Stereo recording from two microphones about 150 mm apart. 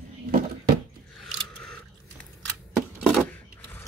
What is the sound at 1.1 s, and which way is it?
Scissors, 5° left (ahead or behind).